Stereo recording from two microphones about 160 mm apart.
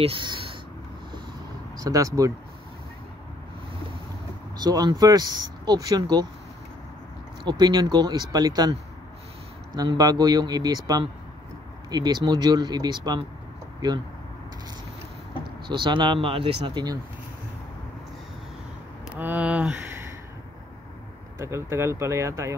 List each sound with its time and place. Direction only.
0.0 s speech: 30° right (ahead or behind)
1.8 s speech: 20° right (ahead or behind)
4.6 s speech: 25° right (ahead or behind)
7.4 s speech: 25° right (ahead or behind)
9.8 s speech: 25° right (ahead or behind)
15.7 s speech: 30° right (ahead or behind)
19.1 s speech: 10° right (ahead or behind)
21.4 s speech: 15° right (ahead or behind)